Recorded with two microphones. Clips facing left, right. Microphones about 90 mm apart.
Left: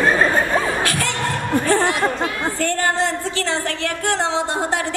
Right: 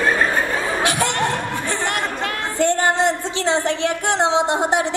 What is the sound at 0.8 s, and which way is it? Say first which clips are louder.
Snicker: right 2 dB; 20° right (ahead or behind).